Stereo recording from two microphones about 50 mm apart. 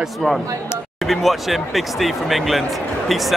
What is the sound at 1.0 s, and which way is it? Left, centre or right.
Speech, centre.